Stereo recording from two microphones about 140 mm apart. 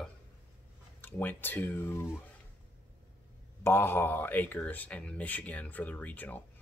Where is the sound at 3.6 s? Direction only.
15° left (ahead or behind).